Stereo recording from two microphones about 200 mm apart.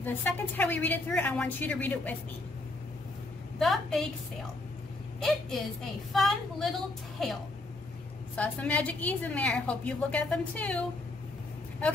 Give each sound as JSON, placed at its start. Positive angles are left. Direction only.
{"t": 0.0, "sound": "a woman's voice", "side_deg": 10}
{"t": 3.5, "sound": "a woman's voice", "side_deg": 0}
{"t": 6.1, "sound": "a woman's voice", "side_deg": 0}
{"t": 8.4, "sound": "a woman's voice", "side_deg": 5}